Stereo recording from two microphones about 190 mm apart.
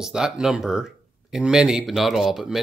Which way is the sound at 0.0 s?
5° right (ahead or behind).